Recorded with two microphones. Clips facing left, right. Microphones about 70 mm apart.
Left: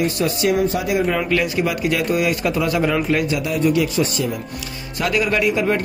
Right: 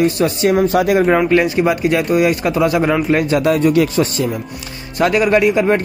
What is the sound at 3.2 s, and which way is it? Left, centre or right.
Speech, right.